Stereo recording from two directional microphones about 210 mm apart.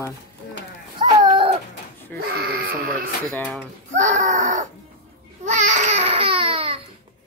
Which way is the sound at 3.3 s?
5° left (ahead or behind).